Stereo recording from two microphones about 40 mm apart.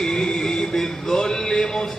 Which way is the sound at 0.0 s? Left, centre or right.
Centre.